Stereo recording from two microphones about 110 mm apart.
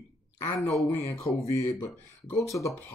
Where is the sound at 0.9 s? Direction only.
25° left (ahead or behind).